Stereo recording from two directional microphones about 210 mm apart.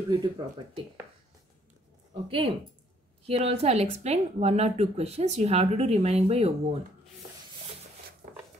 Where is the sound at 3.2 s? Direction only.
30° right (ahead or behind).